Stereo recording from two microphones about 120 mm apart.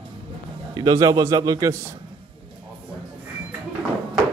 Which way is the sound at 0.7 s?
35° right (ahead or behind).